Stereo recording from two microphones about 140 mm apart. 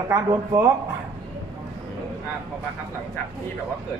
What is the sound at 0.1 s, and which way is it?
Speech, 20° right (ahead or behind).